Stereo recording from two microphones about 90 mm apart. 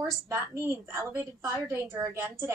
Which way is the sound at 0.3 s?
30° right (ahead or behind).